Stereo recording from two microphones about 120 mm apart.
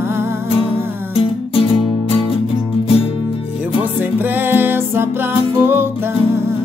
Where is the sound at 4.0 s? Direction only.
15° right (ahead or behind).